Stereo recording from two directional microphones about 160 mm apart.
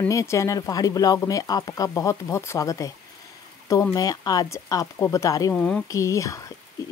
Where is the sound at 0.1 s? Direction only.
20° left (ahead or behind).